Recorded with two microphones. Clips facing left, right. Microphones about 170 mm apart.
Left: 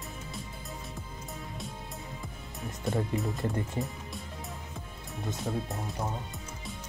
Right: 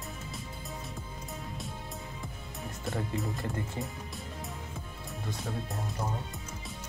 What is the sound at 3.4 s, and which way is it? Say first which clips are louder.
Speech: left 4 dB; 20° left (ahead or behind).